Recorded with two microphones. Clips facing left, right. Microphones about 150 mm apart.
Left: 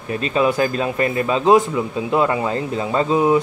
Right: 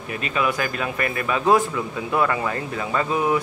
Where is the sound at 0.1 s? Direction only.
30° left (ahead or behind).